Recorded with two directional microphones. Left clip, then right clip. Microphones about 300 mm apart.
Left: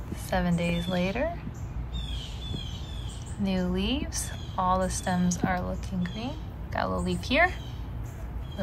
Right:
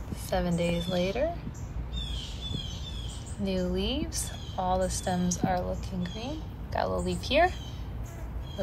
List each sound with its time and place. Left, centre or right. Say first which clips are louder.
0.1 s a woman's voice: left 1 dB; centre
3.4 s a woman's voice: even; centre